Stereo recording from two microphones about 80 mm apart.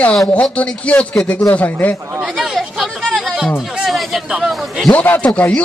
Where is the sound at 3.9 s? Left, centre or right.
Centre.